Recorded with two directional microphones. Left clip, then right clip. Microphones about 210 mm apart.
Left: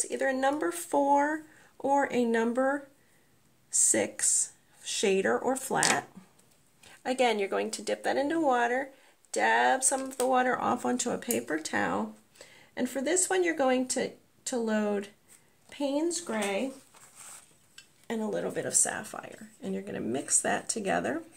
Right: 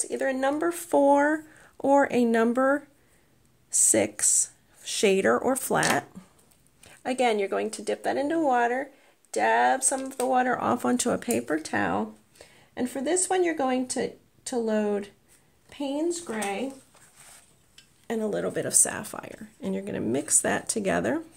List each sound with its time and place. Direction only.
0.0 s speech: 25° right (ahead or behind)
6.8 s speech: 20° right (ahead or behind); by 16.6 s centre (ahead or behind)
18.0 s speech: 25° right (ahead or behind)